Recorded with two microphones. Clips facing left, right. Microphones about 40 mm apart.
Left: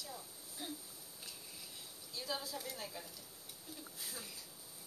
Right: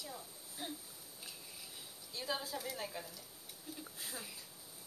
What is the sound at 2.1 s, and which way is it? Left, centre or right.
Speech, centre.